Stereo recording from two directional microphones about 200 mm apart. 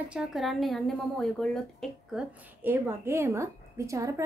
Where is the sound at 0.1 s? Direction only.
Centre (ahead or behind).